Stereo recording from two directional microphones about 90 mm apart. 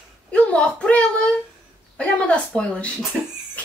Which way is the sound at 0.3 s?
10° left (ahead or behind).